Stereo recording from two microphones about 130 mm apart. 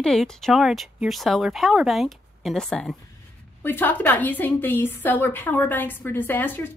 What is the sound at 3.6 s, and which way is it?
A woman's voice, 15° left (ahead or behind).